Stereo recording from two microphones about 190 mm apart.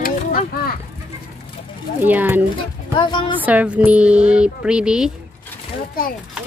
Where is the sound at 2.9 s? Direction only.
25° left (ahead or behind).